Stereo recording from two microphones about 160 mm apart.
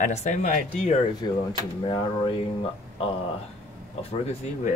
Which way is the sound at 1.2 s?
25° left (ahead or behind).